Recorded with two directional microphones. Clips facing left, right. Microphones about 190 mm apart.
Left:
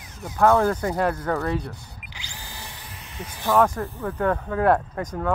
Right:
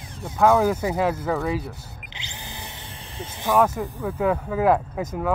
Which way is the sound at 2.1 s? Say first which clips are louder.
Right 2 dB; 20° right (ahead or behind).